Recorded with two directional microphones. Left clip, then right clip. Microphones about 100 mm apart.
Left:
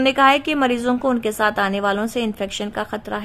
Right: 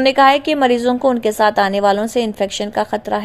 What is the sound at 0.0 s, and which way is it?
A woman's voice, 15° right (ahead or behind).